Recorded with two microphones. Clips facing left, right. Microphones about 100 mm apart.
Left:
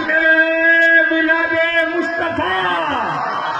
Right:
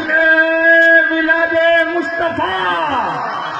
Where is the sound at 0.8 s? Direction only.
35° right (ahead or behind).